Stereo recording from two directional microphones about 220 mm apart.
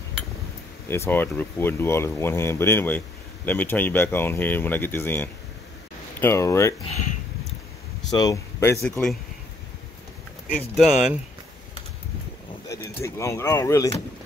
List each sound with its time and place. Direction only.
0.8 s speech: 10° left (ahead or behind)
6.8 s speech: 30° left (ahead or behind)
8.1 s speech: 15° left (ahead or behind)
10.8 s speech: 5° right (ahead or behind)
12.6 s speech: 15° left (ahead or behind)